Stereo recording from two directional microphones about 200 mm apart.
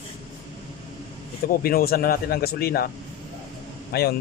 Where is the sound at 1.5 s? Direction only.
50° left (ahead or behind).